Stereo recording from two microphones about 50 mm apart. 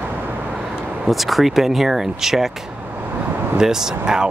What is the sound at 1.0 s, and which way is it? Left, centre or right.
Speech, centre.